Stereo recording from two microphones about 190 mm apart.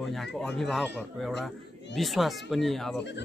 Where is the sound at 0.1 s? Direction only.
Centre (ahead or behind).